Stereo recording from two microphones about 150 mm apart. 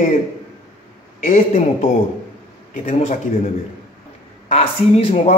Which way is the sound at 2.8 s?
50° left (ahead or behind).